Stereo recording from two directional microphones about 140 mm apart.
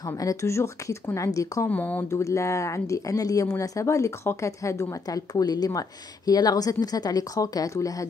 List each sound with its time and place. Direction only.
0.2 s speech: 25° left (ahead or behind)
1.7 s speech: 10° left (ahead or behind)